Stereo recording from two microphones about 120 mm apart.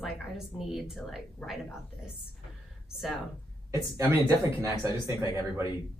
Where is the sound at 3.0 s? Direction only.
Centre (ahead or behind).